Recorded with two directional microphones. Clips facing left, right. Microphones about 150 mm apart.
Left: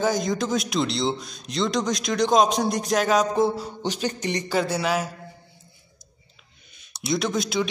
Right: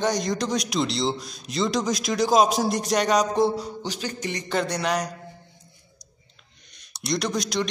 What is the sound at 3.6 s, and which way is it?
Speech, 20° left (ahead or behind).